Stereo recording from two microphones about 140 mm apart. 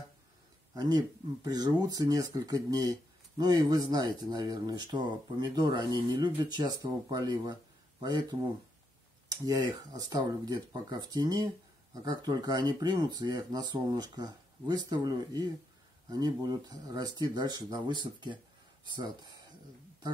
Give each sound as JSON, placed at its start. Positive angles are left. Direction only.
{"t": 0.7, "sound": "speech", "side_deg": -30}
{"t": 9.4, "sound": "speech", "side_deg": -30}